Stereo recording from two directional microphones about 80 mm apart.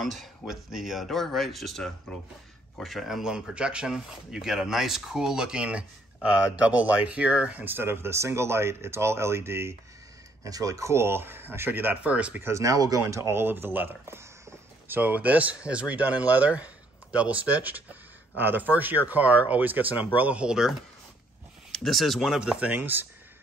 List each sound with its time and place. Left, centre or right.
0.0 s speech: centre; by 9.8 s right
10.4 s speech: right; by 12.4 s centre
12.4 s speech: right
15.0 s speech: centre
21.7 s speech: centre; by 23.0 s right